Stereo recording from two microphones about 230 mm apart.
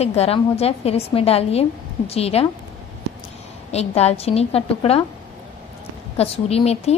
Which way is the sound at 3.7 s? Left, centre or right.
Left.